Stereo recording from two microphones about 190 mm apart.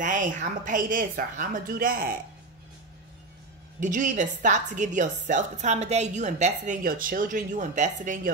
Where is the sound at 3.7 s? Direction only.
40° right (ahead or behind).